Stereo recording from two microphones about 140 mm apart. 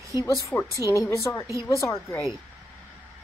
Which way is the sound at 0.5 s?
10° left (ahead or behind).